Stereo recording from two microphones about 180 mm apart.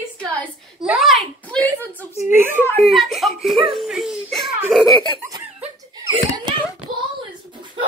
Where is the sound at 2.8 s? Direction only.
Centre (ahead or behind).